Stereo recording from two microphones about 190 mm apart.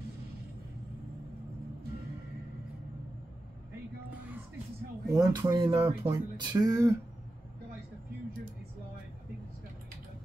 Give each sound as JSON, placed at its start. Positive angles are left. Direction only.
{"t": 5.0, "sound": "speech", "side_deg": -15}
{"t": 5.8, "sound": "speech", "side_deg": -10}